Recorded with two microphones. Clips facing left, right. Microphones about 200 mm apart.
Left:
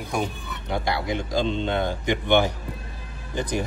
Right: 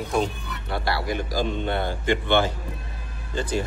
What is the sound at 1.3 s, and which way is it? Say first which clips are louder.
Speech: left 4 dB; 25° left (ahead or behind).